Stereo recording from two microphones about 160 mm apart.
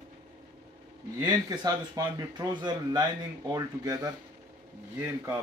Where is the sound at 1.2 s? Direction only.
25° right (ahead or behind).